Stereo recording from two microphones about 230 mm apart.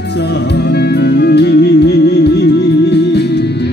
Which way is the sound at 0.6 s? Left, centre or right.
Left.